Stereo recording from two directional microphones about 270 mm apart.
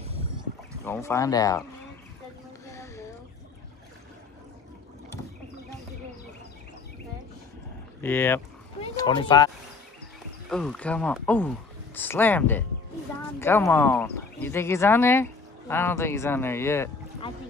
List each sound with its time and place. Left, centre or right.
0.8 s speech: centre
2.6 s a sound: centre
8.0 s speech: centre
10.5 s speech: centre